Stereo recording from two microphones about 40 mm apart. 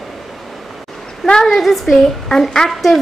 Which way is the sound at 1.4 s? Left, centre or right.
Centre.